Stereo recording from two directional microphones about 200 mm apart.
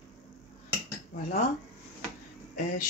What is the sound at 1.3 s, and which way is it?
Speech, 35° left (ahead or behind).